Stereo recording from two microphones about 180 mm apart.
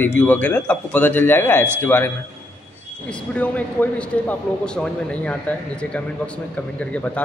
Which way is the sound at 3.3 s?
10° left (ahead or behind).